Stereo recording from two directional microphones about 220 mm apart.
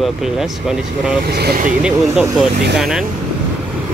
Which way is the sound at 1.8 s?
5° right (ahead or behind).